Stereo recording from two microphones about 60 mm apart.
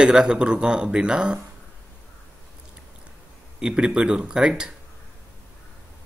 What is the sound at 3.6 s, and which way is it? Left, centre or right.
Speech, centre.